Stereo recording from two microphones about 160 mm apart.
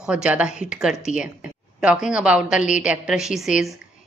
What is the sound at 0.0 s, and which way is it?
A woman's voice, 5° right (ahead or behind).